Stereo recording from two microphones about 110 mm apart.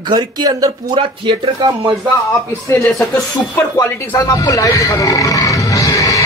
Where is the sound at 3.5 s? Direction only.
25° left (ahead or behind).